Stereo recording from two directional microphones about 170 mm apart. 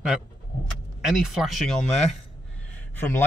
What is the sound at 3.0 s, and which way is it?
Speech, 10° left (ahead or behind).